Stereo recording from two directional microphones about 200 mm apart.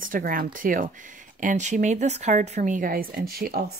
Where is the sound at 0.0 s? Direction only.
45° right (ahead or behind).